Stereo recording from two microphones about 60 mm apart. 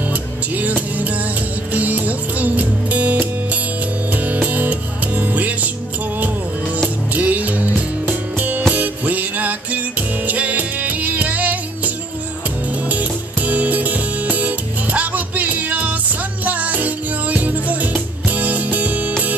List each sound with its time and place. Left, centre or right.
0.1 s music: right
7.1 s music: right